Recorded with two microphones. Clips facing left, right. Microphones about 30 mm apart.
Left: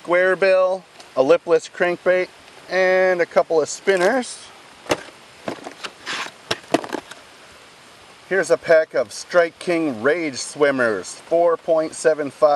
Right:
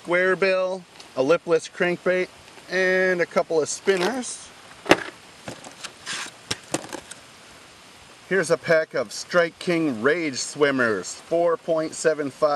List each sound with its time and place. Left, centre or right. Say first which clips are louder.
0.1 s speech: left 4 dB; centre
4.1 s speech: left 8 dB; left
4.9 s a sound: right 4 dB; right
5.4 s a sound: left 8 dB; left
8.3 s speech: left 4 dB; centre
10.0 s speech: left 2 dB; centre